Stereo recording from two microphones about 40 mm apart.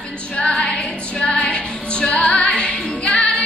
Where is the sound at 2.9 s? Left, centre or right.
Left.